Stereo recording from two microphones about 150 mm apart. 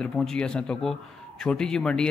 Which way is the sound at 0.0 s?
5° left (ahead or behind).